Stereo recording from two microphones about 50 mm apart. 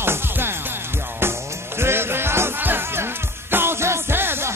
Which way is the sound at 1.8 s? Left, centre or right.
Right.